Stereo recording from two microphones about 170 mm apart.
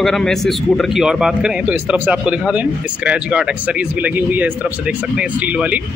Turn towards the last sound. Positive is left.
turn(degrees=-10)  # may be behind; listen again after turning